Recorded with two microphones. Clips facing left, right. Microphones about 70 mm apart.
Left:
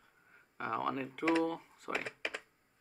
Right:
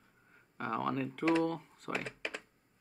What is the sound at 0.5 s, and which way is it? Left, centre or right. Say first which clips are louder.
Speech: right 1 dB; centre.